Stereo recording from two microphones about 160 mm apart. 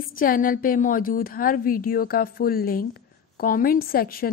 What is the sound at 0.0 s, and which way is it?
A woman's voice, 60° left (ahead or behind).